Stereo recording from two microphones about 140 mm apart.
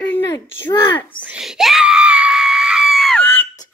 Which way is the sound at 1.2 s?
5° right (ahead or behind).